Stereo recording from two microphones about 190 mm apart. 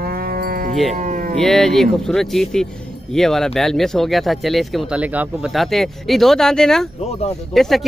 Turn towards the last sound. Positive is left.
turn(degrees=0)  # may be behind; listen again after turning